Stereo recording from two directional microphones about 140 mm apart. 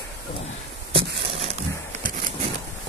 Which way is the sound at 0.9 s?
40° right (ahead or behind).